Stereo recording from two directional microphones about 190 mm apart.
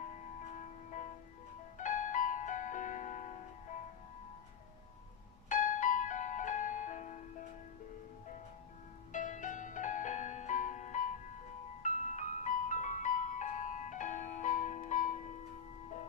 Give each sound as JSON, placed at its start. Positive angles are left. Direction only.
{"t": 1.8, "sound": "music", "side_deg": 40}
{"t": 5.5, "sound": "music", "side_deg": 40}
{"t": 9.1, "sound": "music", "side_deg": 40}